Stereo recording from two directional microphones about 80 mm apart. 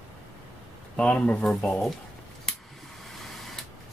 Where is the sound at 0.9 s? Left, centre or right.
Centre.